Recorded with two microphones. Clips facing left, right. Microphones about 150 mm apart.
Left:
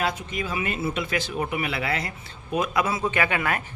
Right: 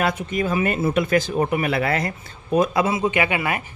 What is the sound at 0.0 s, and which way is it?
Speech, 50° right (ahead or behind).